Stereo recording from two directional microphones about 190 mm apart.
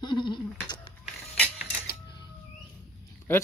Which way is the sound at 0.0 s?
25° left (ahead or behind).